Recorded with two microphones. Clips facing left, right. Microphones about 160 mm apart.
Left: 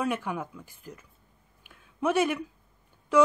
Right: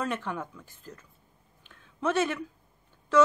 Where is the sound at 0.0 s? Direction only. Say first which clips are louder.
Left 2 dB; 10° left (ahead or behind).